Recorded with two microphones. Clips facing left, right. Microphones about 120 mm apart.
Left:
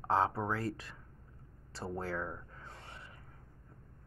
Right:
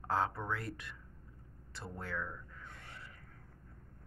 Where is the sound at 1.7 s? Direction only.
35° left (ahead or behind).